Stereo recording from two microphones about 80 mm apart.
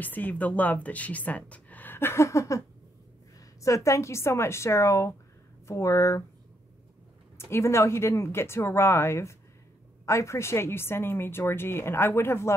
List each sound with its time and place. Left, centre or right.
0.0 s speech: left
3.6 s a woman's voice: left
7.3 s a woman's voice: left